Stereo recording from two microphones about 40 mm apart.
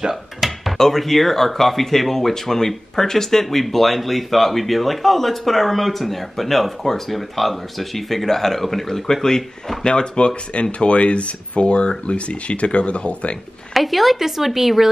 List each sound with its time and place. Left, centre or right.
0.1 s a sound: centre
0.7 s speech: centre; by 13.4 s left
13.7 s speech: centre